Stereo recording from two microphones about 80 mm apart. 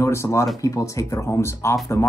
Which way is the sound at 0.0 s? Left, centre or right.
Left.